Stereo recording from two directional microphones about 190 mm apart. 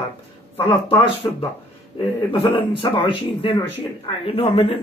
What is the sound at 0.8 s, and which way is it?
A man's voice, 25° left (ahead or behind).